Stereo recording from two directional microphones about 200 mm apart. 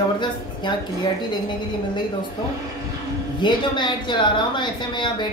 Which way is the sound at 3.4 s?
20° left (ahead or behind).